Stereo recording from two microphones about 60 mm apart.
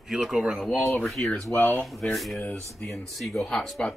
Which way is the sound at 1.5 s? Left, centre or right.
Left.